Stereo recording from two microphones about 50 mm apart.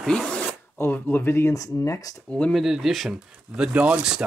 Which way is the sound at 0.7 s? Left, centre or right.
Left.